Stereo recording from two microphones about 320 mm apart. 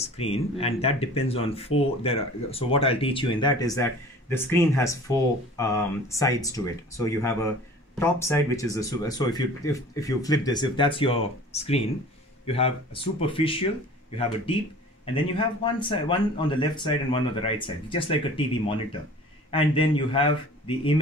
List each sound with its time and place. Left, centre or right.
0.0 s speech: centre
15.3 s speech: centre